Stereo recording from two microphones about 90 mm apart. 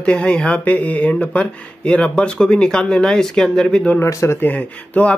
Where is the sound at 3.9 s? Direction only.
30° left (ahead or behind).